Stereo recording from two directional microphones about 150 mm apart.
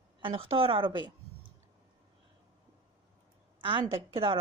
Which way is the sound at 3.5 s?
35° right (ahead or behind).